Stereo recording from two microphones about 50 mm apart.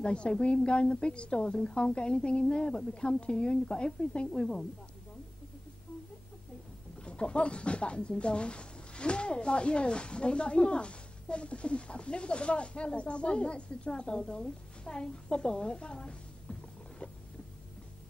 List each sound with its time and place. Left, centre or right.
0.0 s speech: centre
7.1 s speech: left